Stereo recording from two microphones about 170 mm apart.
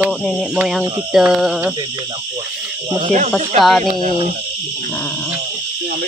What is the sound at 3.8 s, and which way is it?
Speech, 55° right (ahead or behind).